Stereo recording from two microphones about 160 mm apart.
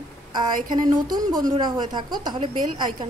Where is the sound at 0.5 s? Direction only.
55° right (ahead or behind).